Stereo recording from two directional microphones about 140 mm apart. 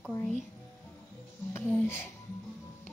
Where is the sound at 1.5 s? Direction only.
15° left (ahead or behind).